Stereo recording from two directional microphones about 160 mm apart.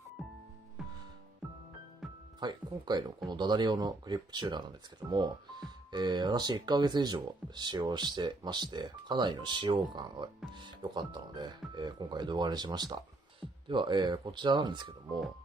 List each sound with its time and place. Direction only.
0.2 s music: centre (ahead or behind)
1.4 s music: centre (ahead or behind)
2.4 s speech: 25° right (ahead or behind)